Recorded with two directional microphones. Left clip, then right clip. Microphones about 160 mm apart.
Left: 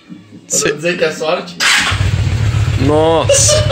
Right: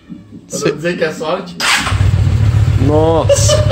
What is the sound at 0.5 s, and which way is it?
Speech, 5° right (ahead or behind).